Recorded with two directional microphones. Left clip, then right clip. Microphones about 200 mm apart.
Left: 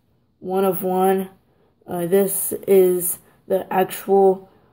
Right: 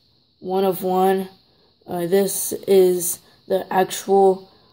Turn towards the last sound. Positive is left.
turn(degrees=-5)  # may be behind; listen again after turning